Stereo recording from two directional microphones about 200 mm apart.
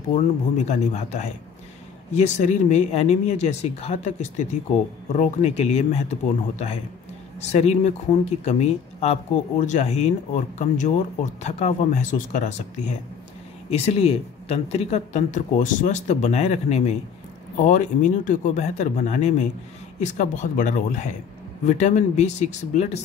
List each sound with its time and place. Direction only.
0.1 s speech: 35° left (ahead or behind)
7.4 s speech: 35° left (ahead or behind)